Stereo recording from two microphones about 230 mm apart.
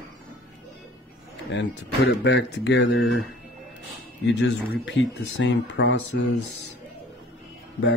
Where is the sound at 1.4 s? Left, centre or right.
Left.